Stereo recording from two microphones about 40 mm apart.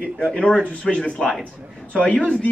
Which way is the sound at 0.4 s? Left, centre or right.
Left.